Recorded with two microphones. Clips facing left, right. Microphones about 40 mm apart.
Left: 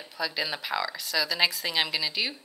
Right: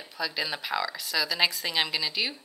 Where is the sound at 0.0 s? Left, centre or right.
Centre.